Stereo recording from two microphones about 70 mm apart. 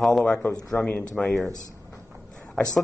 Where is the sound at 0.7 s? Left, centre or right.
Left.